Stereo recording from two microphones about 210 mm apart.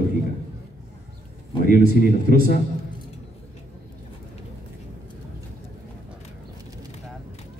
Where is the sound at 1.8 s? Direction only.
45° right (ahead or behind).